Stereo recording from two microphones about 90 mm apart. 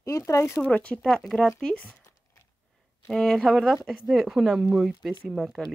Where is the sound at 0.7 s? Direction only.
15° left (ahead or behind).